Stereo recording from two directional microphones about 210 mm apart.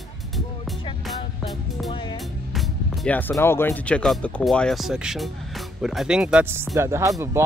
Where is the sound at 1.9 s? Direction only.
20° left (ahead or behind).